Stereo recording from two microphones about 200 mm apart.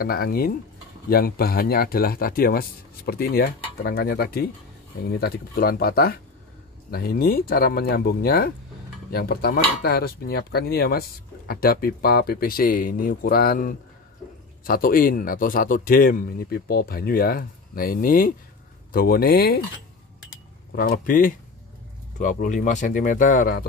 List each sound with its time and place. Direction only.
0.0 s speech: 50° left (ahead or behind)
20.7 s speech: 45° left (ahead or behind)